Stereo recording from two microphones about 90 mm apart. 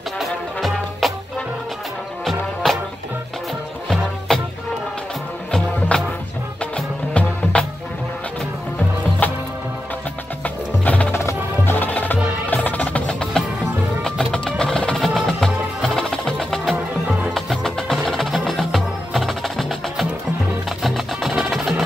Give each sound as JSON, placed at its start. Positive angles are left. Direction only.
{"t": 0.2, "sound": "music", "side_deg": 0}
{"t": 2.2, "sound": "music", "side_deg": 0}
{"t": 4.3, "sound": "music", "side_deg": 5}
{"t": 5.5, "sound": "music", "side_deg": 5}
{"t": 7.5, "sound": "music", "side_deg": 15}
{"t": 9.2, "sound": "music", "side_deg": 20}
{"t": 10.4, "sound": "music", "side_deg": 15}